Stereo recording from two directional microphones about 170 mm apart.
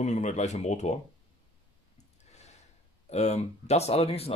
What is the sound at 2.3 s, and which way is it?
Gasp, 40° left (ahead or behind).